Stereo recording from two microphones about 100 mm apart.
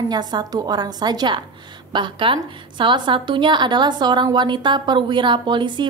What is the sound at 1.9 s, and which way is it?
A woman's voice, 55° right (ahead or behind).